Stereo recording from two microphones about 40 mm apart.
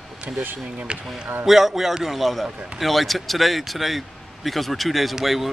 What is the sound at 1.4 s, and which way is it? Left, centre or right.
Speech, centre.